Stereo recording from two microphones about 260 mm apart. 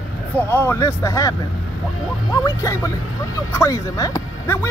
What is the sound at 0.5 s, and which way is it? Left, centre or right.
Speech, centre.